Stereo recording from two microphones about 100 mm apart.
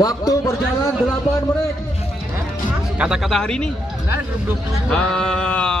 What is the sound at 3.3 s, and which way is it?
Speech, 5° left (ahead or behind).